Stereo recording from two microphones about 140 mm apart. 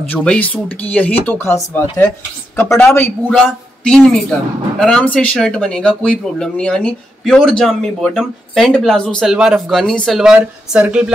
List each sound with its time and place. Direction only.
0.1 s speech: 10° left (ahead or behind)
2.6 s speech: 5° left (ahead or behind)
2.9 s speech: 15° left (ahead or behind)
3.4 s speech: 5° left (ahead or behind)